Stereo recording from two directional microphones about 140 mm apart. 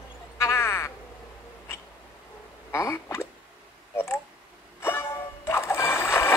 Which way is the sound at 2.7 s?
20° left (ahead or behind).